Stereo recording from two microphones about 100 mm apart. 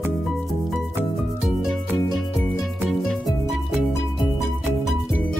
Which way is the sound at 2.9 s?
Centre (ahead or behind).